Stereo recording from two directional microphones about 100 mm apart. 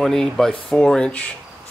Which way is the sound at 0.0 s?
5° left (ahead or behind).